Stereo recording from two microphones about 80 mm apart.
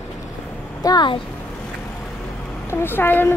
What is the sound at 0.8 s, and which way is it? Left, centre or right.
Speech, left.